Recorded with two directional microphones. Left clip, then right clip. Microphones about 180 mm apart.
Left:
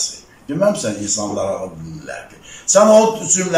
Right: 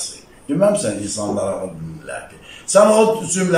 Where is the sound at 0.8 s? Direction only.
Centre (ahead or behind).